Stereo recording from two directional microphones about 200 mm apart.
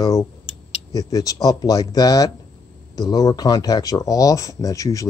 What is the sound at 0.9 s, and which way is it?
Speech, 20° left (ahead or behind).